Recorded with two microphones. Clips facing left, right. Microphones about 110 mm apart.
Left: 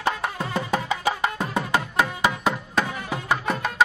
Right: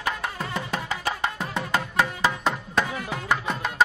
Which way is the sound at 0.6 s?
15° left (ahead or behind).